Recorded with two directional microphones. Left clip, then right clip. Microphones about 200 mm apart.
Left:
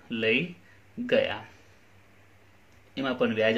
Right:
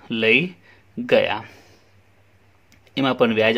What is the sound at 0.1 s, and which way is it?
Speech, 45° right (ahead or behind).